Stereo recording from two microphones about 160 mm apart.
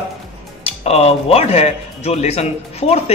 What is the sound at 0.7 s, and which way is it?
Speech, 40° left (ahead or behind).